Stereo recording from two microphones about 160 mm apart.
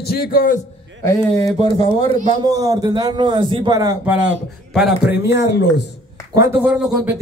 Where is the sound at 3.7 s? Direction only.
20° right (ahead or behind).